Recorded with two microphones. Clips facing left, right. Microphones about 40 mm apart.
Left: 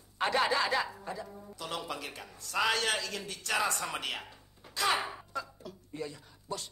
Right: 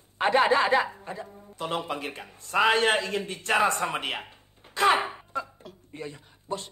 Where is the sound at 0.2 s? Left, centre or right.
Right.